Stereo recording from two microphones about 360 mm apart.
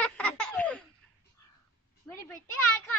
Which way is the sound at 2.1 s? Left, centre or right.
Centre.